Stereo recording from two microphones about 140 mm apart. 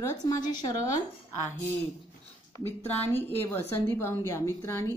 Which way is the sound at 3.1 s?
15° left (ahead or behind).